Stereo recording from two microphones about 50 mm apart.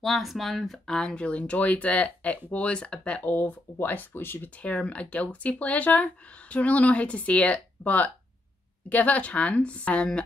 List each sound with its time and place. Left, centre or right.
0.0 s speech: centre
1.1 s speech: left
3.3 s speech: left
4.6 s speech: left